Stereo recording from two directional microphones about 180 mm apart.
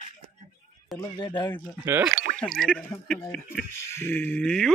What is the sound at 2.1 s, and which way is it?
Speech, 50° right (ahead or behind).